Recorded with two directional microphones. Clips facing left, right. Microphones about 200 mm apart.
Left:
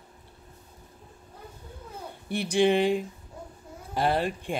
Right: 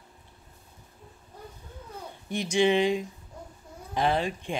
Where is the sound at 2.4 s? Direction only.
55° left (ahead or behind).